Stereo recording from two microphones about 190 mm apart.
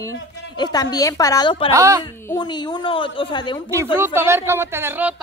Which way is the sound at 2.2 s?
20° left (ahead or behind).